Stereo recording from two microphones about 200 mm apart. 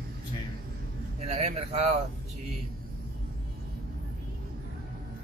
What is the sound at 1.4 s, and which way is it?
Speech, 30° right (ahead or behind).